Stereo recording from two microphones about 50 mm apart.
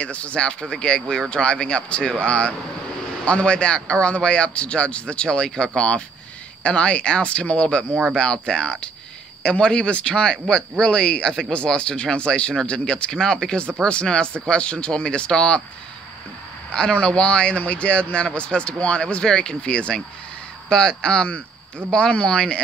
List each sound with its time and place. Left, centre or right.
0.0 s speech: left
7.9 s speech: centre
8.2 s speech: centre
17.0 s speech: left